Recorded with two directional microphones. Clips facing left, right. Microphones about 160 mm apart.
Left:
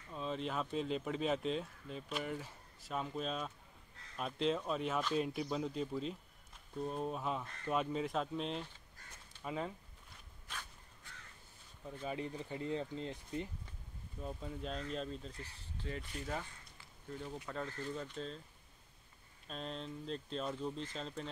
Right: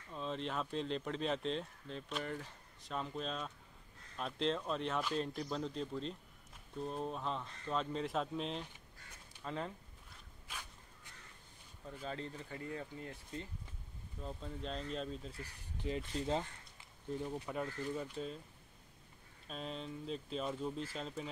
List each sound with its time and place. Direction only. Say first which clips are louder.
0.1 s speech: left 1 dB; 5° left (ahead or behind)
12.0 s speech: left 3 dB; 15° left (ahead or behind)
14.2 s speech: left 1 dB; 5° left (ahead or behind)
15.4 s speech: right 4 dB; 15° right (ahead or behind)
19.4 s speech: even; 5° right (ahead or behind)